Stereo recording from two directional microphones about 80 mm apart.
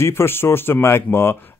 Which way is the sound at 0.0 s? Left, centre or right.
Left.